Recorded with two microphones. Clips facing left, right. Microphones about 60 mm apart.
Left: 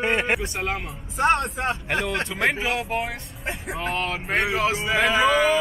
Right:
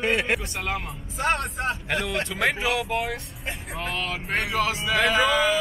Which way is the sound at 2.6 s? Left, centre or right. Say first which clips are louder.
Even; left.